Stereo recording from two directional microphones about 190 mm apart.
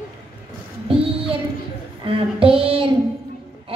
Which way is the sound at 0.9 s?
30° right (ahead or behind).